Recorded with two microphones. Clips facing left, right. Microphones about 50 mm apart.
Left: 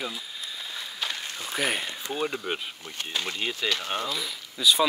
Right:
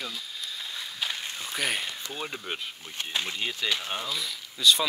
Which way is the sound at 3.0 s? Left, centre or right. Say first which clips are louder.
Even; centre.